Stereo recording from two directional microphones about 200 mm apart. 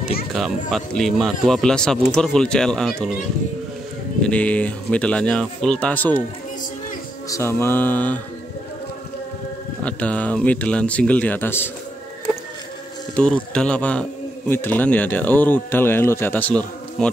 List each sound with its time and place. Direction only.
0.0 s speech: 50° left (ahead or behind)
0.3 s speech: centre (ahead or behind)
4.2 s speech: 5° left (ahead or behind)
7.2 s speech: 15° left (ahead or behind)
9.8 s speech: 5° left (ahead or behind)
13.1 s speech: 5° left (ahead or behind)